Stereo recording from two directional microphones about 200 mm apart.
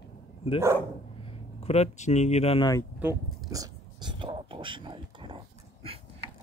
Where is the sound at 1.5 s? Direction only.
30° left (ahead or behind).